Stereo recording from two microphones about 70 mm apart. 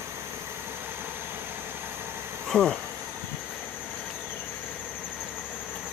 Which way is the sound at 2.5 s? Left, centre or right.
Centre.